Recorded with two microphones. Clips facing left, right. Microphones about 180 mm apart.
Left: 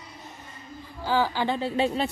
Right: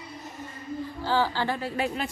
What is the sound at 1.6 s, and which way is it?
Speech, 25° left (ahead or behind).